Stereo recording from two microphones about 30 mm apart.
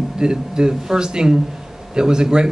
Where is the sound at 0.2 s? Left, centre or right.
Right.